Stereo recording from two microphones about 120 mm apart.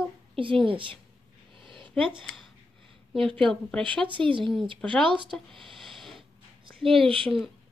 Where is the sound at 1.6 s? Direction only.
45° right (ahead or behind).